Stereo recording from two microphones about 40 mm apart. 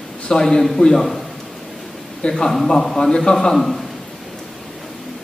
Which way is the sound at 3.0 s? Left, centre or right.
Centre.